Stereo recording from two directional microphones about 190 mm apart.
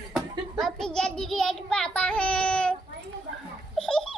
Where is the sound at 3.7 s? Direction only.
5° left (ahead or behind).